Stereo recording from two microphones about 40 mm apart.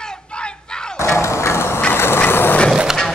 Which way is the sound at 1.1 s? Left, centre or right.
Left.